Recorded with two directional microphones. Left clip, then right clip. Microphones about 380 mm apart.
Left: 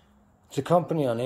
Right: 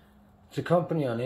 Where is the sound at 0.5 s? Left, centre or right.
Centre.